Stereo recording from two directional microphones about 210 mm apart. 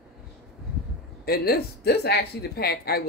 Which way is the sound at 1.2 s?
45° left (ahead or behind).